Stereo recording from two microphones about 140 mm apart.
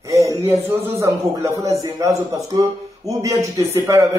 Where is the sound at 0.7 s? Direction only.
15° right (ahead or behind).